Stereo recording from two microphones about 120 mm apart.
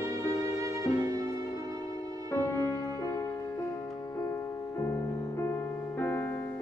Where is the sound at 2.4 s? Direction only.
30° right (ahead or behind).